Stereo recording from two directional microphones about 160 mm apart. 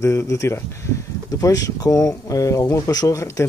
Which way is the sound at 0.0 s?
15° left (ahead or behind).